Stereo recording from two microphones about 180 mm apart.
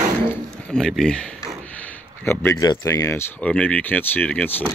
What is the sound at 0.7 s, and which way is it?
Speech, 5° left (ahead or behind).